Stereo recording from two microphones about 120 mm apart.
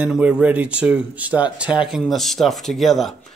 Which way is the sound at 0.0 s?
10° right (ahead or behind).